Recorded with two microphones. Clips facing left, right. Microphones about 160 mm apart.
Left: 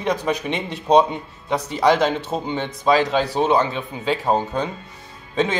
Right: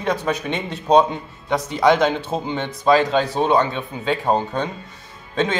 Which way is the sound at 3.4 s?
20° left (ahead or behind).